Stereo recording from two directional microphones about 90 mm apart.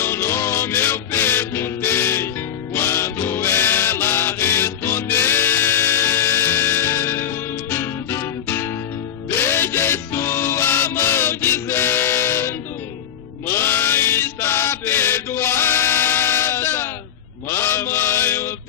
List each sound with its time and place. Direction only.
0.0 s music: 25° left (ahead or behind)
13.5 s chant: 25° left (ahead or behind)
17.5 s mantra: 30° left (ahead or behind)